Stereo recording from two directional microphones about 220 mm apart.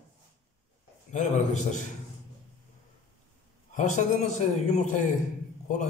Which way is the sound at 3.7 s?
35° left (ahead or behind).